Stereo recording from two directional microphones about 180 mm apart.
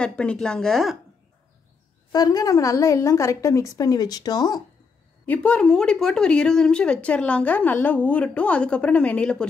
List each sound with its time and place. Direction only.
0.0 s a woman's voice: 5° left (ahead or behind)
2.1 s a woman's voice: 20° left (ahead or behind)
5.2 s a woman's voice: 10° left (ahead or behind)